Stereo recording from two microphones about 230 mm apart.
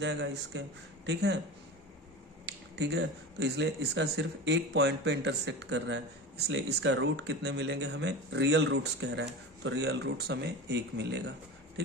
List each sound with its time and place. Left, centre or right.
0.0 s speech: right
2.4 s speech: right